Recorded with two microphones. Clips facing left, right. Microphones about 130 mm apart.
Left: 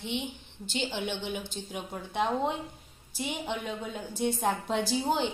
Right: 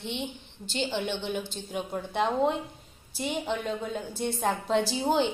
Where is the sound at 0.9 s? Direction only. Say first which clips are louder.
Right 3 dB; 10° left (ahead or behind).